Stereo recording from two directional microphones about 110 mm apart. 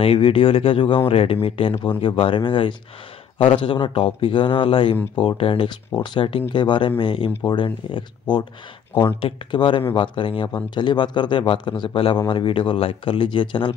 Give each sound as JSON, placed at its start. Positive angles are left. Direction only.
{"t": 0.0, "sound": "speech", "side_deg": 55}